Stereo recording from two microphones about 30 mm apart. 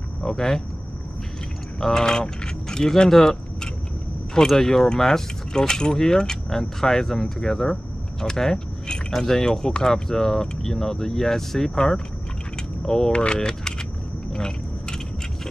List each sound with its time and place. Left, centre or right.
0.2 s speech: centre
1.8 s speech: centre
4.6 s speech: centre
7.7 s a sound: left
9.4 s speech: left
13.1 s speech: left
13.4 s speech: left
14.3 s biting: left